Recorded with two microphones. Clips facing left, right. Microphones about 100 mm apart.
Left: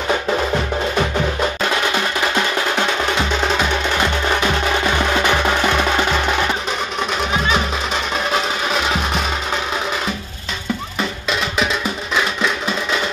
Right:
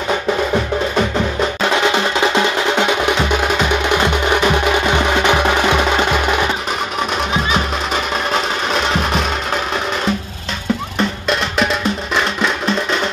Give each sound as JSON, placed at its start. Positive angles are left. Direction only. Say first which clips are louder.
{"t": 1.6, "sound": "music", "louder": "right 4 dB", "side_deg": -20}
{"t": 7.4, "sound": "music", "louder": "right 1 dB", "side_deg": 0}
{"t": 11.2, "sound": "music", "louder": "right 1 dB", "side_deg": 0}